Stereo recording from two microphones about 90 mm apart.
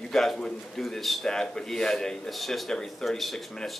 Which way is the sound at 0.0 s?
5° left (ahead or behind).